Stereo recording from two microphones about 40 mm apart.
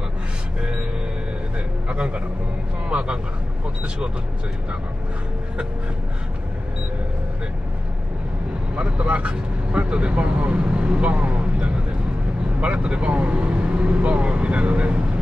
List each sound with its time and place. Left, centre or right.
0.6 s speech: right
1.9 s speech: right
8.7 s speech: right